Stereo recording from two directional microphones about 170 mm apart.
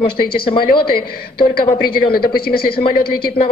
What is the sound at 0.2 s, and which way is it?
Speech, 60° left (ahead or behind).